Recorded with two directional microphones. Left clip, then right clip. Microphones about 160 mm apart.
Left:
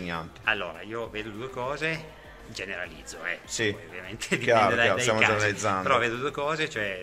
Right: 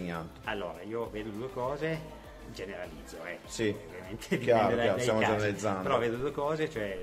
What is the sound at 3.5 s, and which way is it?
Speech, 15° left (ahead or behind).